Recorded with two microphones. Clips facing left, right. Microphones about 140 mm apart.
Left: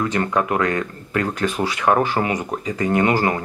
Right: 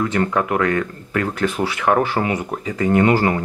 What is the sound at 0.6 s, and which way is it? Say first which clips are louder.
Speech: right 2 dB; 30° left (ahead or behind).